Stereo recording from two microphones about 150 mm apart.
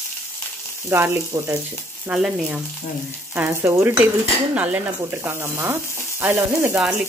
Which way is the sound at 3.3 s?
15° right (ahead or behind).